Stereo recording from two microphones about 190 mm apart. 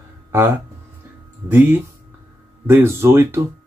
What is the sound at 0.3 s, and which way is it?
Speech, 10° right (ahead or behind).